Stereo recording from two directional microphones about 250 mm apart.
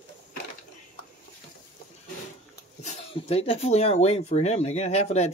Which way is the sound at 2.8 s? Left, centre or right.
Left.